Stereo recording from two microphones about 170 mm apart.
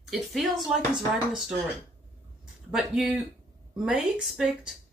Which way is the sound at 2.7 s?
5° right (ahead or behind).